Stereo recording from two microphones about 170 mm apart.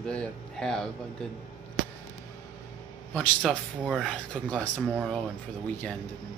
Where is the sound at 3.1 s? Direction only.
5° left (ahead or behind).